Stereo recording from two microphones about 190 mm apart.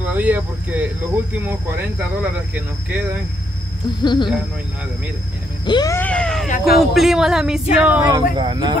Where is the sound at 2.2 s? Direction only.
5° right (ahead or behind).